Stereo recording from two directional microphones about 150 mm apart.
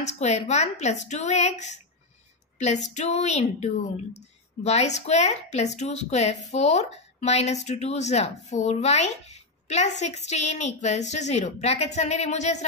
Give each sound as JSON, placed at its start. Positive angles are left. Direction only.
{"t": 0.0, "sound": "speech", "side_deg": 50}